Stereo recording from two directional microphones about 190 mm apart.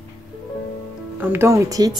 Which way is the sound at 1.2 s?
10° right (ahead or behind).